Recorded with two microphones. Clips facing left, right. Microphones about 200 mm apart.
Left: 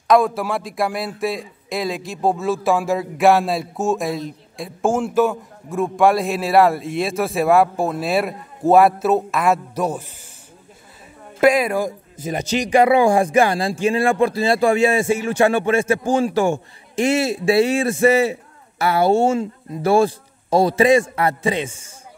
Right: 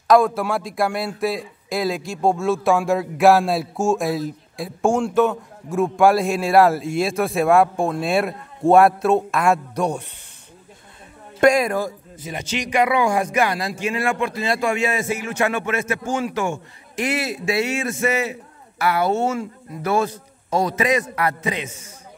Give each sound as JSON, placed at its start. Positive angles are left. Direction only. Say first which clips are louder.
{"t": 0.4, "sound": "a man's voice", "louder": "even", "side_deg": 0}
{"t": 11.3, "sound": "a man's voice", "louder": "left 1 dB", "side_deg": 5}
{"t": 12.2, "sound": "speech", "louder": "left 6 dB", "side_deg": 40}